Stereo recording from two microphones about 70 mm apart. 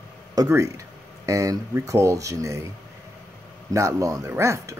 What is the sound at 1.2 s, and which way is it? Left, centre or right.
Speech, right.